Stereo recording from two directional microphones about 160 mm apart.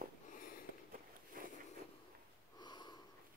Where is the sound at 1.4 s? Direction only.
60° right (ahead or behind).